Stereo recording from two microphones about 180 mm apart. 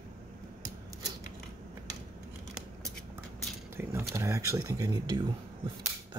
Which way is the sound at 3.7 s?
15° right (ahead or behind).